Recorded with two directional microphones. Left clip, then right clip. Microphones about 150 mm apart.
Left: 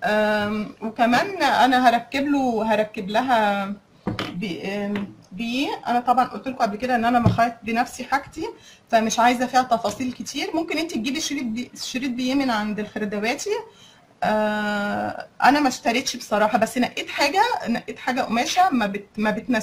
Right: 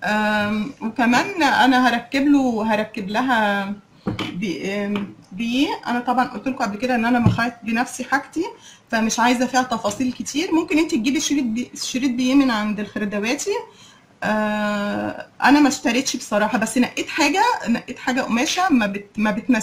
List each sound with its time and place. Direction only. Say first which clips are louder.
0.0 s a sound: even; 40° left (ahead or behind)
0.9 s speech: right 1 dB; 35° left (ahead or behind)
5.4 s speech: right 4 dB; 35° left (ahead or behind)
8.9 s speech: left 1 dB; 30° left (ahead or behind)